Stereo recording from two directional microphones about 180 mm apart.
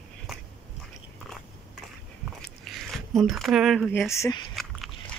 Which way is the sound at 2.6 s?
Centre (ahead or behind).